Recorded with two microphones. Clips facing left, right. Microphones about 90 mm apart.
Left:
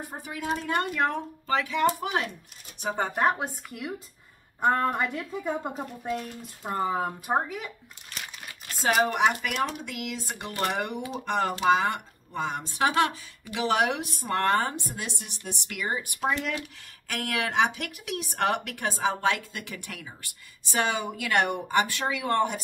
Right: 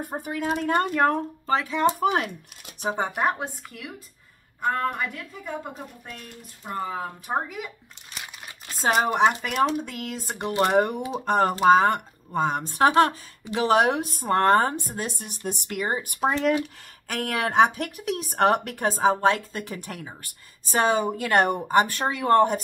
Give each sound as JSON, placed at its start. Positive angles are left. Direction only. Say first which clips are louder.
{"t": 0.0, "sound": "speech", "louder": "right 6 dB", "side_deg": -50}
{"t": 3.2, "sound": "speech", "louder": "even", "side_deg": 0}
{"t": 4.6, "sound": "a woman's voice", "louder": "left 2 dB", "side_deg": 30}
{"t": 7.4, "sound": "speech", "louder": "right 1 dB", "side_deg": -5}
{"t": 8.8, "sound": "speech", "louder": "right 3 dB", "side_deg": -35}